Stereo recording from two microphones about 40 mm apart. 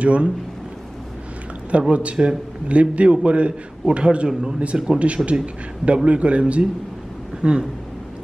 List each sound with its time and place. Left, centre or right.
0.0 s a man's voice: right
1.7 s a man's voice: right